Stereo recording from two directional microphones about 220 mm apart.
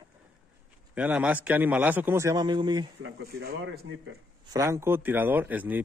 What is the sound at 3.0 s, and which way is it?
Speech, 45° right (ahead or behind).